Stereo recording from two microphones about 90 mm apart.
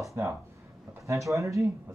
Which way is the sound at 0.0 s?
35° right (ahead or behind).